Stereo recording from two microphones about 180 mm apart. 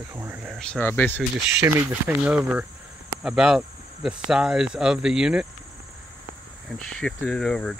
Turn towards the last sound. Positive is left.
turn(degrees=5)  # may be behind; listen again after turning